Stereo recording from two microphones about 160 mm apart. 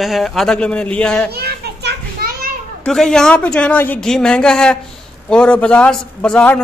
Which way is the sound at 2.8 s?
5° left (ahead or behind).